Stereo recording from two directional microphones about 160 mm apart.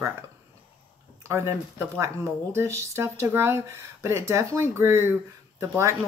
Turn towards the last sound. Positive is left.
turn(degrees=-20)  # may be behind; listen again after turning